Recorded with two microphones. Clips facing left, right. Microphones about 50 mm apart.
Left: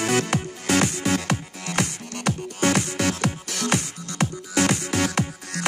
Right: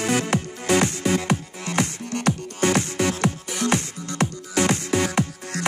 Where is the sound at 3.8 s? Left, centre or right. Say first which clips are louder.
Right 3 dB; right.